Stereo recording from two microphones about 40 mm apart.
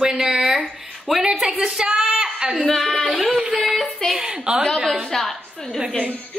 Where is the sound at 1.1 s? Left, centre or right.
Centre.